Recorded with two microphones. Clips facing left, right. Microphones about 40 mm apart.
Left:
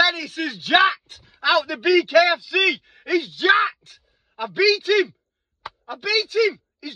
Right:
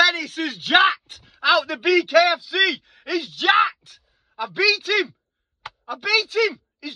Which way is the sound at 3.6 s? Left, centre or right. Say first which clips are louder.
Right 2 dB; right.